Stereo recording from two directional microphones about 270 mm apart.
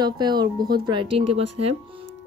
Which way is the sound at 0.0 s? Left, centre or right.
Centre.